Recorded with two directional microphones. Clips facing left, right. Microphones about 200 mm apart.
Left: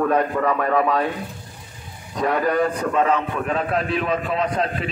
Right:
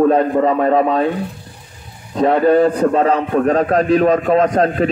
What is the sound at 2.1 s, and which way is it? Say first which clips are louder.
A man's voice: right 8 dB; 25° right (ahead or behind).